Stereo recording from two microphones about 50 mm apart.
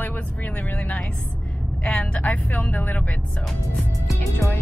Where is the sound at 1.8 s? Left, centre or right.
Centre.